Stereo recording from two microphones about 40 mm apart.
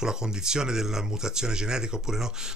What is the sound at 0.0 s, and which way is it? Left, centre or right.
Speech, centre.